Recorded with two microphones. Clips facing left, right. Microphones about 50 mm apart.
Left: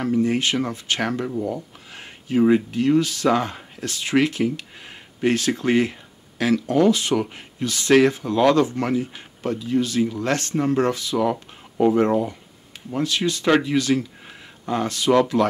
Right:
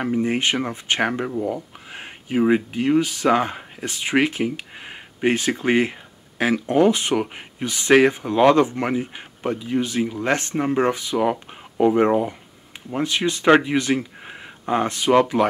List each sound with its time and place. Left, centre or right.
0.0 s speech: right
1.3 s speech: centre